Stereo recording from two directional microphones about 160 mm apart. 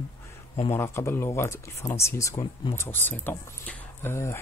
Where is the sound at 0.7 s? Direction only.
15° left (ahead or behind).